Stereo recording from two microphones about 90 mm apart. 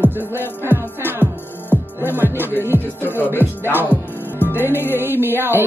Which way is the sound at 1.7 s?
20° right (ahead or behind).